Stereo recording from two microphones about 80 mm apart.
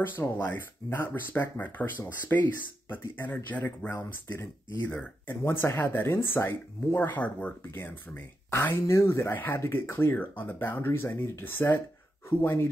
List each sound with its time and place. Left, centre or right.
0.0 s speech: left
7.1 s speech: left
8.5 s speech: left